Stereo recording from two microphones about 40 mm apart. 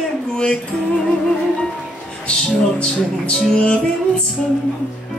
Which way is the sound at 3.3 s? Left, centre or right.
Left.